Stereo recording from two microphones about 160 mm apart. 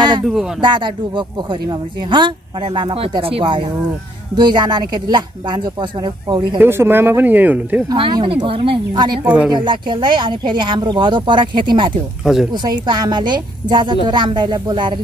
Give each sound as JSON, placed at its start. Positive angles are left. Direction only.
{"t": 0.6, "sound": "speech", "side_deg": -30}
{"t": 6.6, "sound": "speech", "side_deg": -15}
{"t": 7.9, "sound": "speech", "side_deg": -30}
{"t": 9.2, "sound": "speech", "side_deg": -5}
{"t": 9.5, "sound": "speech", "side_deg": -30}